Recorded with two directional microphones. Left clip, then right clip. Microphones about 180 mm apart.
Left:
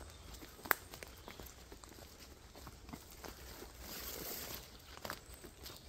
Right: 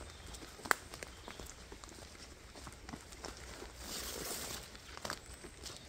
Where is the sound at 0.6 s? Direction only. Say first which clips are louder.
Right 2 dB; 20° left (ahead or behind).